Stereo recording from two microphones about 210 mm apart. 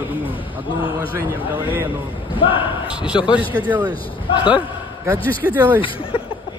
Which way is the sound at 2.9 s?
5° right (ahead or behind).